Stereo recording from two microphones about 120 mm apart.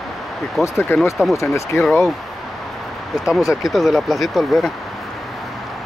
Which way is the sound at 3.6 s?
Centre (ahead or behind).